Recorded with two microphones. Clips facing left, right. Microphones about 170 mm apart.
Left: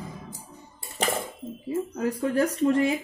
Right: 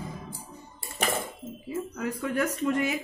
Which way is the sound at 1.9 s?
30° left (ahead or behind).